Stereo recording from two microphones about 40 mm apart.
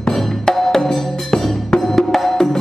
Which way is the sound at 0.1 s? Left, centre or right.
Centre.